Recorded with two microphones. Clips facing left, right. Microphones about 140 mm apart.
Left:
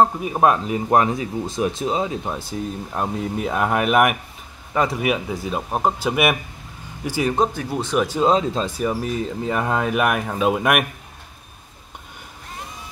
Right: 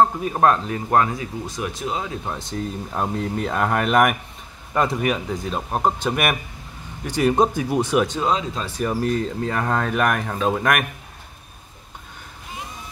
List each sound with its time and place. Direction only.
0.0 s speech: 10° left (ahead or behind)
2.3 s speech: 10° left (ahead or behind)
7.2 s speech: 15° right (ahead or behind)
8.6 s speech: 10° left (ahead or behind)